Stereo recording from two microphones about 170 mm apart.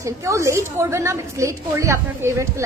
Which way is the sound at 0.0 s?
15° right (ahead or behind).